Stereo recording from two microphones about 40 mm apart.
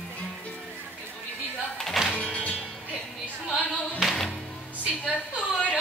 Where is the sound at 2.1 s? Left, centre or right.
Left.